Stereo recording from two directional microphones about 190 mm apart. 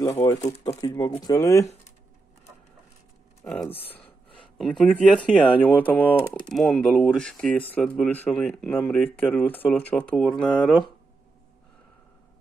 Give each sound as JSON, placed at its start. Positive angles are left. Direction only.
{"t": 0.4, "sound": "speech", "side_deg": 30}
{"t": 3.4, "sound": "speech", "side_deg": 10}
{"t": 3.9, "sound": "gasp", "side_deg": 10}
{"t": 5.2, "sound": "speech", "side_deg": 5}